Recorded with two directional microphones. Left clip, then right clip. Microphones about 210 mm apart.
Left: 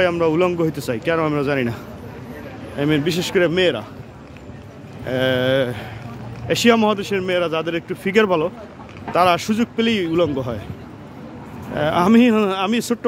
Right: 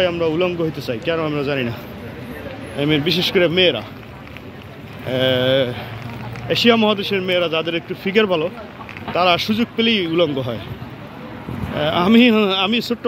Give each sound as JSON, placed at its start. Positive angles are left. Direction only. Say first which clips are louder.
{"t": 0.0, "sound": "a man's voice", "louder": "left 1 dB", "side_deg": 20}
{"t": 2.8, "sound": "speech", "louder": "right 2 dB", "side_deg": 5}
{"t": 5.0, "sound": "speech", "louder": "right 2 dB", "side_deg": 5}
{"t": 11.7, "sound": "speech", "louder": "even", "side_deg": 10}